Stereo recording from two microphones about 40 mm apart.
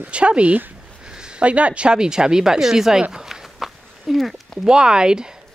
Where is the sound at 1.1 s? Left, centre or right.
Centre.